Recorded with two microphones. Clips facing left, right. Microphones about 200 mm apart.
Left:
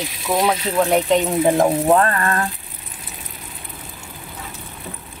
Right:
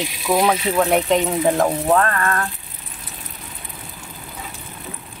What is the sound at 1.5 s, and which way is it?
Speech, 15° left (ahead or behind).